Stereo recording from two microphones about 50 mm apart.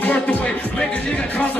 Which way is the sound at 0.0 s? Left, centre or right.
Left.